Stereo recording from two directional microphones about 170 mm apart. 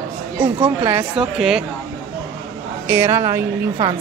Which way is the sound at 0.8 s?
15° right (ahead or behind).